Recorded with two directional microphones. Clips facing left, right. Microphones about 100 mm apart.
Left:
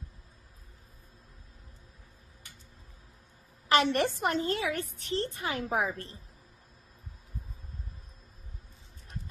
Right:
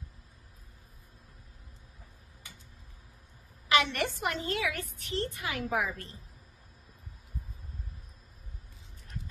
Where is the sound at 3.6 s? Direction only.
35° left (ahead or behind).